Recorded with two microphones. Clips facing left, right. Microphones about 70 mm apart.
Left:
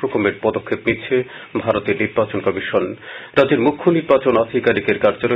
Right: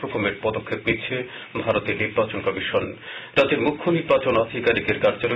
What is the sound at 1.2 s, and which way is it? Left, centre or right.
Speech, left.